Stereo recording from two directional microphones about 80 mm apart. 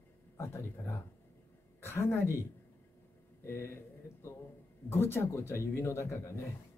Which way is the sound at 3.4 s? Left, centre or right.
Left.